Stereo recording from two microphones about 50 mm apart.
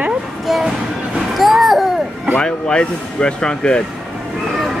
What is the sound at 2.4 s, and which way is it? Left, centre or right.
Speech, centre.